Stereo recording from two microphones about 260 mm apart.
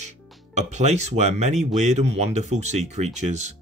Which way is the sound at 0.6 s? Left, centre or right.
Right.